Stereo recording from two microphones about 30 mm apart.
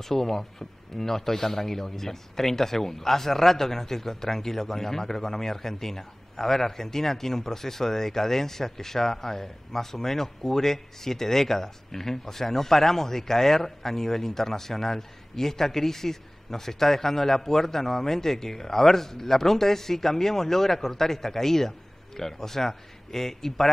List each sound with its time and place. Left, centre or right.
0.0 s speech: centre